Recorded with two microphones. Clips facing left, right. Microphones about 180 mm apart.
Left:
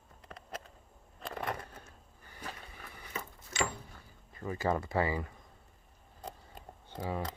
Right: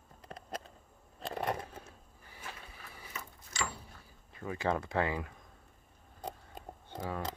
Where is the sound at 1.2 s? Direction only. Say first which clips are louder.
Right 3 dB; 20° right (ahead or behind).